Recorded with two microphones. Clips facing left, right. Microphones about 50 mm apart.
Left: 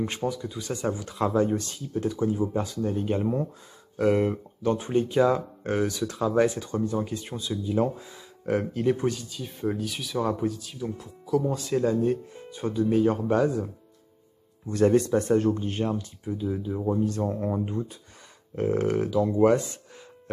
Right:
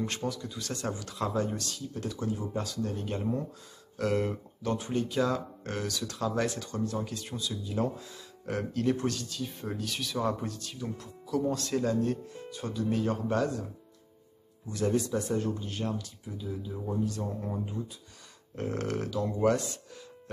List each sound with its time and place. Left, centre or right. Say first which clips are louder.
0.0 s speech: left 5 dB; centre
14.7 s speech: left 8 dB; left
15.8 s speech: left 6 dB; left
18.6 s speech: left 8 dB; centre